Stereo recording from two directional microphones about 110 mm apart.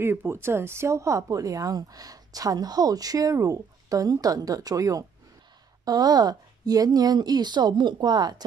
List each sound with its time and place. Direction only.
0.0 s speech: 20° right (ahead or behind); by 8.5 s 40° right (ahead or behind)